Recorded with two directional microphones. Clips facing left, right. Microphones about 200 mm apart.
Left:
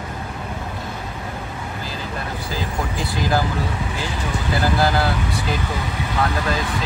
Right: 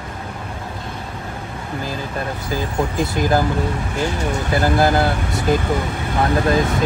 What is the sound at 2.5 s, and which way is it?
Speech, 50° right (ahead or behind).